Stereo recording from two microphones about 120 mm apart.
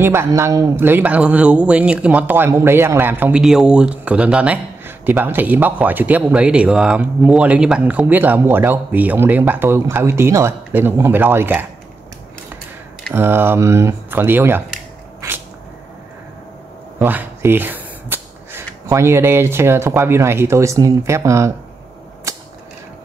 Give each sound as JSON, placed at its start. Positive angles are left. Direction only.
{"t": 0.0, "sound": "speech", "side_deg": -20}
{"t": 13.1, "sound": "speech", "side_deg": -20}
{"t": 15.2, "sound": "a sound", "side_deg": -25}
{"t": 17.0, "sound": "a sound", "side_deg": -15}
{"t": 18.9, "sound": "speech", "side_deg": -20}
{"t": 22.3, "sound": "mechanisms", "side_deg": -25}